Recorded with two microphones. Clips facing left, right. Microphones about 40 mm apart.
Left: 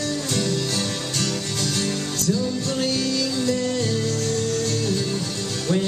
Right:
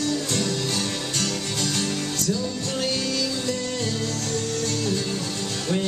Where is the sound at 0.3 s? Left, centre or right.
Centre.